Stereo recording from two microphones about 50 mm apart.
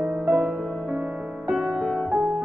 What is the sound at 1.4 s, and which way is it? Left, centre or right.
Music, centre.